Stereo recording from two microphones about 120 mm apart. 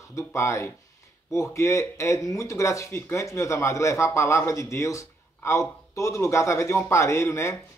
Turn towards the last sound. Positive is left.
turn(degrees=20)  # may be behind; listen again after turning